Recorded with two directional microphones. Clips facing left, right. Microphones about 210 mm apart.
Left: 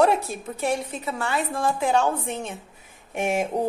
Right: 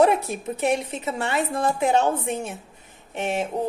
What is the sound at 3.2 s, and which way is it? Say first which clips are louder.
Speech: left 2 dB; 10° left (ahead or behind).